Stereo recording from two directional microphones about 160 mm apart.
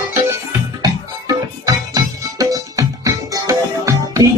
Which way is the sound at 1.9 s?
20° right (ahead or behind).